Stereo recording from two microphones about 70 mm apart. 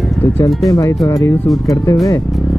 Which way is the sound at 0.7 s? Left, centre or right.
Left.